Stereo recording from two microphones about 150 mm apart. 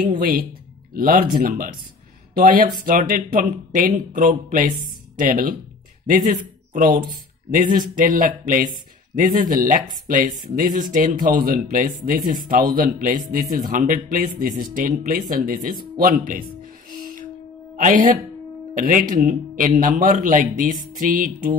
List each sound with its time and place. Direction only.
0.0 s speech: 80° right
0.9 s speech: 70° right (ahead or behind)
6.7 s speech: 60° right (ahead or behind)
17.7 s speech: 60° right (ahead or behind)